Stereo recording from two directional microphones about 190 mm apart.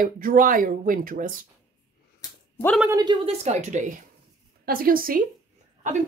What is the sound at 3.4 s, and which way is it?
Speech, 40° right (ahead or behind).